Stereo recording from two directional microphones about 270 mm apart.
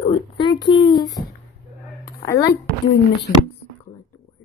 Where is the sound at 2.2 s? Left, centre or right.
Centre.